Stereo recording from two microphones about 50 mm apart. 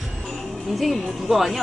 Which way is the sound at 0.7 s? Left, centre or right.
Centre.